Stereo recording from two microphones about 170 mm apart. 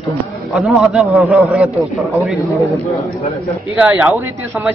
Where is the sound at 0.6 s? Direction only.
Centre (ahead or behind).